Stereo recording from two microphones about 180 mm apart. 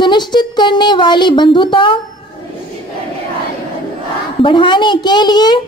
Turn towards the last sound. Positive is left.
turn(degrees=25)  # may be behind; listen again after turning